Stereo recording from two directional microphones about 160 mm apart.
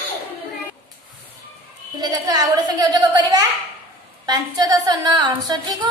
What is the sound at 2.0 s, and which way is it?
A woman's voice, 25° right (ahead or behind).